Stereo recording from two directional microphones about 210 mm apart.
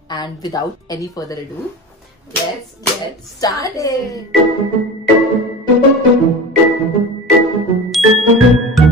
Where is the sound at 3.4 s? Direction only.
15° left (ahead or behind).